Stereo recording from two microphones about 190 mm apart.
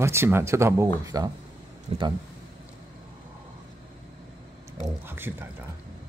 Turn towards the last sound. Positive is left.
turn(degrees=-10)  # may be behind; listen again after turning